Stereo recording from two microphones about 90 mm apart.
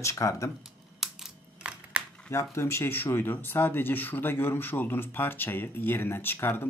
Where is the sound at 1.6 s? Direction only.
15° right (ahead or behind).